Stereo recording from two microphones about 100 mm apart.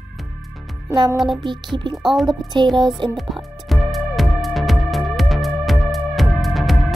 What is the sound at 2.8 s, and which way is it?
Music, 50° right (ahead or behind).